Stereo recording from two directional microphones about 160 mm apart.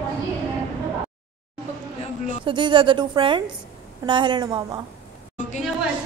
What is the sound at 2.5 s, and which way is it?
A woman's voice, 30° right (ahead or behind).